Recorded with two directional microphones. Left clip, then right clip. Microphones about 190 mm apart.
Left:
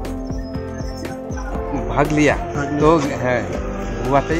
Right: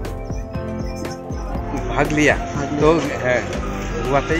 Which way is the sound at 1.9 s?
50° left (ahead or behind).